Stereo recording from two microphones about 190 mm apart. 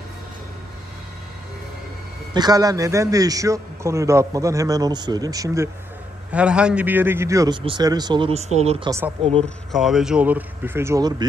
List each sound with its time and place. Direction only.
2.3 s a man's voice: 20° right (ahead or behind)
6.3 s speech: 5° right (ahead or behind); by 9.5 s 30° right (ahead or behind)
9.7 s a man's voice: centre (ahead or behind); by 11.2 s 20° right (ahead or behind)